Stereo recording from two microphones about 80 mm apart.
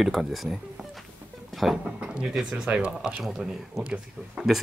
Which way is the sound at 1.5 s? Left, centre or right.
Centre.